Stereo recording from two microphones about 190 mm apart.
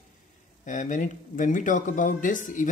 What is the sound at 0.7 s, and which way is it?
Speech, 40° left (ahead or behind).